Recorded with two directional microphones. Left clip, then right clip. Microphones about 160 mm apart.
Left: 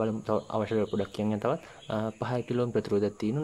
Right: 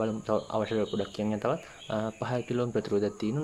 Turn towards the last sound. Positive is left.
turn(degrees=25)  # may be behind; listen again after turning